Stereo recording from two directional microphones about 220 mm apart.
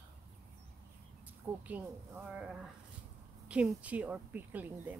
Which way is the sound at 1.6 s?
5° right (ahead or behind).